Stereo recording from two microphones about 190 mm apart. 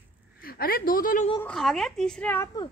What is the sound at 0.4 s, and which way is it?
Speech, 50° left (ahead or behind).